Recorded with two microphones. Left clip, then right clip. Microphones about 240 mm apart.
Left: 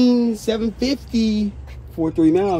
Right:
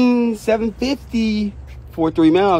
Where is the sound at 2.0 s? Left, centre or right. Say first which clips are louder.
Right 3 dB; right.